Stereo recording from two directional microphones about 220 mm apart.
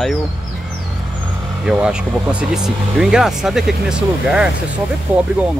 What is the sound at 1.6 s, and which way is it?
Speech, 5° right (ahead or behind).